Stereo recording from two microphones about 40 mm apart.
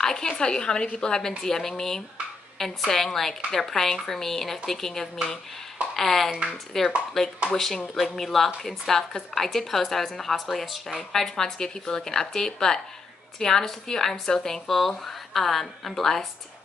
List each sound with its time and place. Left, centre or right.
0.0 s a woman's voice: centre